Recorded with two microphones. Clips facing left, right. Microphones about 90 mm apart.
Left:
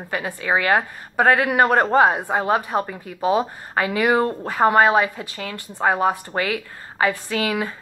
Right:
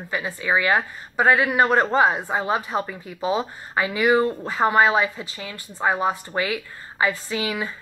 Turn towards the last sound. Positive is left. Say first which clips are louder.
# left 3 dB
turn(degrees=55)  # may be behind; listen again after turning